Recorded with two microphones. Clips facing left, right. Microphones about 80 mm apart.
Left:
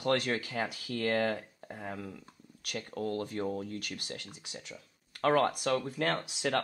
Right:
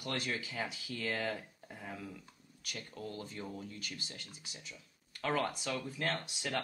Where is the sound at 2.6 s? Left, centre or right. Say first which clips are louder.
Left 9 dB; left.